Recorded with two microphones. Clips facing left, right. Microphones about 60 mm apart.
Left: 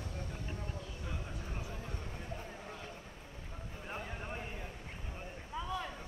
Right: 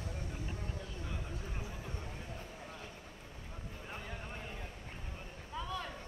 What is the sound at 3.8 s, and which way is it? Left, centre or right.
Vehicle, centre.